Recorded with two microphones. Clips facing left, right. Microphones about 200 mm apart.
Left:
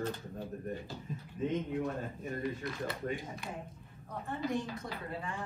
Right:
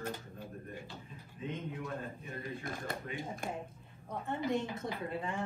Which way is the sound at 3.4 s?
50° right (ahead or behind).